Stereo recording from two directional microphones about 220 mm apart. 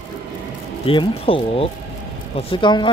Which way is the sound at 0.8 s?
25° left (ahead or behind).